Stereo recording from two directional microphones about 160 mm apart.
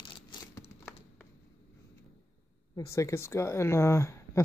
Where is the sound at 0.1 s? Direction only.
30° left (ahead or behind).